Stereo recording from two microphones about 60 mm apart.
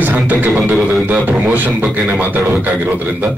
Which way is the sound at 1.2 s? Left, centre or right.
Right.